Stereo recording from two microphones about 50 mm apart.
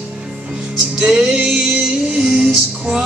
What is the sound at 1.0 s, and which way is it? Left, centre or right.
Music, centre.